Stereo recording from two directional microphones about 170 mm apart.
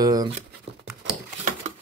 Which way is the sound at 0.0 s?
20° right (ahead or behind).